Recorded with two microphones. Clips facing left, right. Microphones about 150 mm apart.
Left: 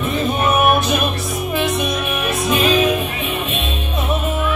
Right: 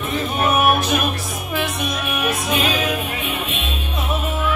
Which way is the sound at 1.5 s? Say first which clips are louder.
Left 4 dB; 25° left (ahead or behind).